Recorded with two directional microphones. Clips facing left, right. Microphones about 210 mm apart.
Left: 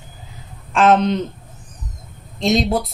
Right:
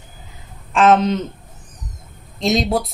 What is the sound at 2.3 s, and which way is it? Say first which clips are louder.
Speech: left 1 dB; centre (ahead or behind).